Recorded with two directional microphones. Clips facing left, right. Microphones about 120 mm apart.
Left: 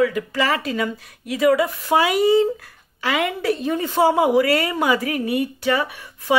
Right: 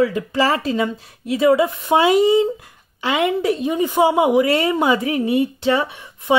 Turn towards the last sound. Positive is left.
turn(degrees=-25)  # may be behind; listen again after turning